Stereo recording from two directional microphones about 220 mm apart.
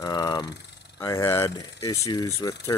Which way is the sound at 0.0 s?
20° left (ahead or behind).